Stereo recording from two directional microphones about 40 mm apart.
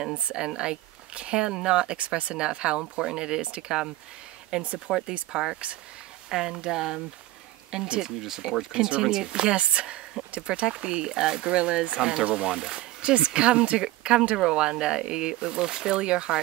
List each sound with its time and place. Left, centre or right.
0.3 s speech: centre
2.0 s speech: right
4.5 s speech: right
12.0 s speech: centre
12.3 s speech: right